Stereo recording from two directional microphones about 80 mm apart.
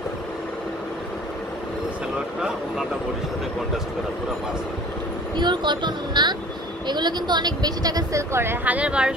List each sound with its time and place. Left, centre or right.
5.3 s a woman's voice: right
8.2 s a woman's voice: right
8.6 s speech: centre